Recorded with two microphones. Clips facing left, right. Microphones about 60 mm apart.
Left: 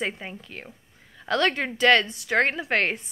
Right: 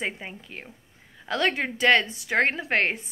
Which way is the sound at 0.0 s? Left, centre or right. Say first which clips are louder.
Left 1 dB; centre.